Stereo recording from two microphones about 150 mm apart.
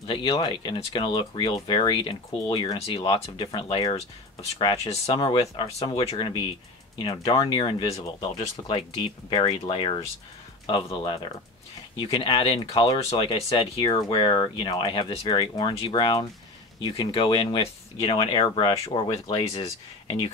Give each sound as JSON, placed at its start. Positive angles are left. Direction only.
{"t": 0.0, "sound": "speech", "side_deg": 35}